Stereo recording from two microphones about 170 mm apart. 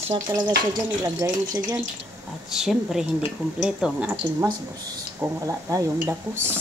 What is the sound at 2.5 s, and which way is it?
Speech, centre (ahead or behind).